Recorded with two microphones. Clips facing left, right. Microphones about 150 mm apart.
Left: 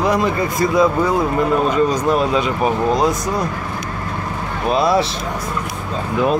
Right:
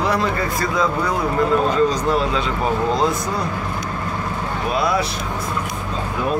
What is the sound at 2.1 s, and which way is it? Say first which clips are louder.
Speech: left 3 dB; 15° left (ahead or behind).